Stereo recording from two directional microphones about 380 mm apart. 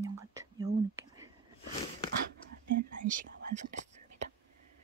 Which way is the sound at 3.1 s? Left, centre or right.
Right.